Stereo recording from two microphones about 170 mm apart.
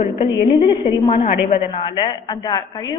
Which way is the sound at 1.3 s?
50° left (ahead or behind).